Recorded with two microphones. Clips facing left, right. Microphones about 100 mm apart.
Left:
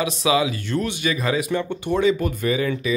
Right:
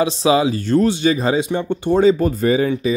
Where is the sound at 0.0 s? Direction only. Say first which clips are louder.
Right 5 dB; 30° right (ahead or behind).